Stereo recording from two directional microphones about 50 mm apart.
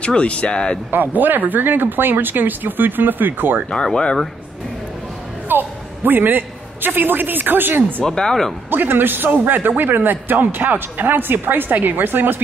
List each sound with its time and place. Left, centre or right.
0.0 s speech: left
0.9 s speech: right
3.7 s speech: centre
5.5 s a man's voice: right
8.0 s speech: centre
8.6 s a man's voice: right